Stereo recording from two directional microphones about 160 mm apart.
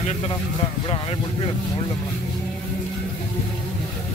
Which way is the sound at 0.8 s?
30° left (ahead or behind).